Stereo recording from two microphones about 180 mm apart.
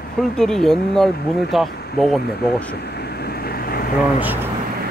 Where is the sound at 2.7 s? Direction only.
65° left (ahead or behind).